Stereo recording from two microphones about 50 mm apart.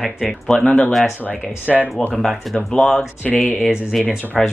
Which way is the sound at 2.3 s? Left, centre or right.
Centre.